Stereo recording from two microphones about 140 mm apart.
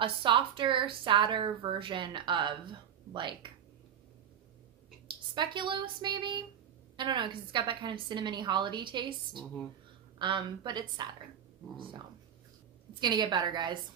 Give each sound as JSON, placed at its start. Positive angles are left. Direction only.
{"t": 0.0, "sound": "speech", "side_deg": -35}
{"t": 5.3, "sound": "speech", "side_deg": -35}
{"t": 9.3, "sound": "speech", "side_deg": 5}
{"t": 10.1, "sound": "speech", "side_deg": -35}
{"t": 13.0, "sound": "speech", "side_deg": -30}